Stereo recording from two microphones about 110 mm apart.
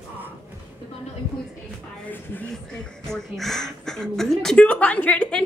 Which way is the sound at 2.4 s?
5° left (ahead or behind).